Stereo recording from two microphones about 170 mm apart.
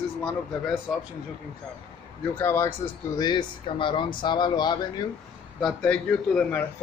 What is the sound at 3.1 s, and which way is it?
Speech, 25° left (ahead or behind).